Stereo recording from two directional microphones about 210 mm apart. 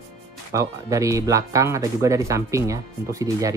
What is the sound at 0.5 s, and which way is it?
Speech, 15° right (ahead or behind).